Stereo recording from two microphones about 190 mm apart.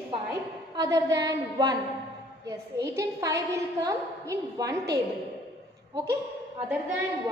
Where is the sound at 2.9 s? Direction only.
15° right (ahead or behind).